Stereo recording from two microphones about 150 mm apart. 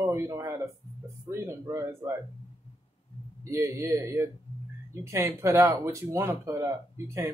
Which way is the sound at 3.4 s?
20° right (ahead or behind).